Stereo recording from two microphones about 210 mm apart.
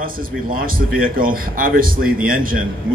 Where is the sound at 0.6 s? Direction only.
45° right (ahead or behind).